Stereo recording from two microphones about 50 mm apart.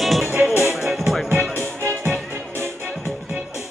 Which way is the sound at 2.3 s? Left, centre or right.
Right.